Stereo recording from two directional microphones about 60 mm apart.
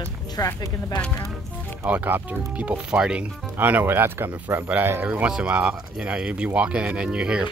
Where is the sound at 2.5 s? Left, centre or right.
Centre.